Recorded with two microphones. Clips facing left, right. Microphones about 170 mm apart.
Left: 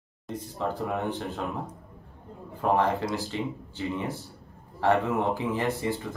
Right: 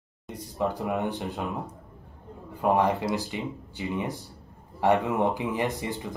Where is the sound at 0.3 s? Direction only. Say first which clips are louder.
Right 2 dB; 15° right (ahead or behind).